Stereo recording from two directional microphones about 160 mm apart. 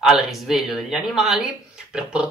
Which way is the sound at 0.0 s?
Centre (ahead or behind).